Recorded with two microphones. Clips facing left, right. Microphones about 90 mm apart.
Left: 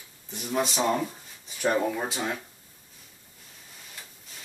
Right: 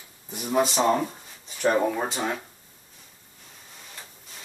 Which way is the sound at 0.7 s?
25° right (ahead or behind).